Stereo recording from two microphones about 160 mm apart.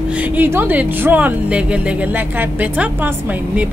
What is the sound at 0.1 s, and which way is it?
Speech, 10° right (ahead or behind).